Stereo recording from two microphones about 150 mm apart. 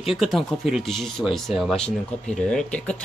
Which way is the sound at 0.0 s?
Centre (ahead or behind).